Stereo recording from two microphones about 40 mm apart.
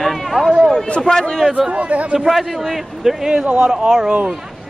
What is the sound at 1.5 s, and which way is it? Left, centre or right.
Speech, right.